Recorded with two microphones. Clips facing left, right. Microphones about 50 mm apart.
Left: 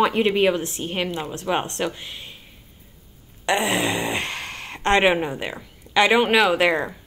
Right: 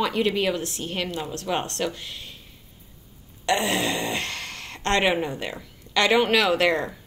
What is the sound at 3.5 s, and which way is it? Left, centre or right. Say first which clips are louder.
Speech: left 2 dB; centre.